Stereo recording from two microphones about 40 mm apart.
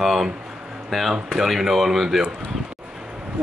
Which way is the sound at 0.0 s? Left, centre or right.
Centre.